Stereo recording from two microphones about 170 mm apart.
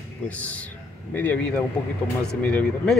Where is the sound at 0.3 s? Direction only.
10° left (ahead or behind).